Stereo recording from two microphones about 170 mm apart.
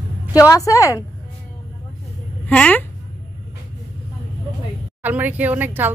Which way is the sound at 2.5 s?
5° left (ahead or behind).